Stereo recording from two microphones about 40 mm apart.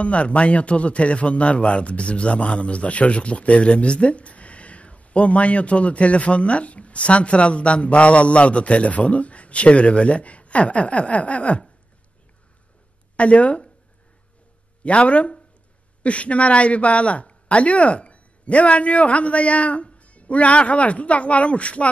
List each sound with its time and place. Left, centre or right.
0.0 s a man's voice: left
13.1 s a man's voice: left
14.8 s a man's voice: left